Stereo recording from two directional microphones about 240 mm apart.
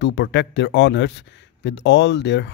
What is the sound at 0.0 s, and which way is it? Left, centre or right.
A man's voice, left.